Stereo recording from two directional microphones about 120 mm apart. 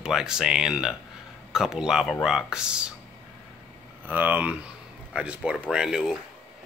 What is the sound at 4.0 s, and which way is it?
Speech, 15° right (ahead or behind).